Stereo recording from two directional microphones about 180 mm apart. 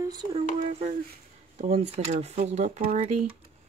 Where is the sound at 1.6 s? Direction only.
35° right (ahead or behind).